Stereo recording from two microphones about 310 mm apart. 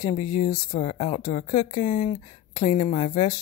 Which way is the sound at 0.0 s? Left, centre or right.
Centre.